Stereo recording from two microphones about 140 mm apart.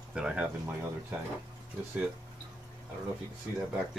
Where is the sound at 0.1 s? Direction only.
5° right (ahead or behind).